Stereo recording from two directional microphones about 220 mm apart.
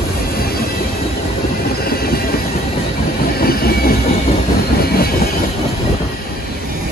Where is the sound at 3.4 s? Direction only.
45° left (ahead or behind).